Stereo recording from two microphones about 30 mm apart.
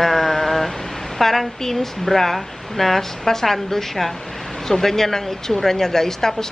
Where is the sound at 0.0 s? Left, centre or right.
Centre.